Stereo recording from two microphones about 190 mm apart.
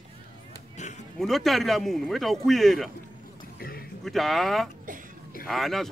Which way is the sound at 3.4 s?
50° left (ahead or behind).